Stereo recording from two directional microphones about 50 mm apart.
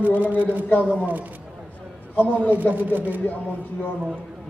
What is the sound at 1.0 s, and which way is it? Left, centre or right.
Speech, right.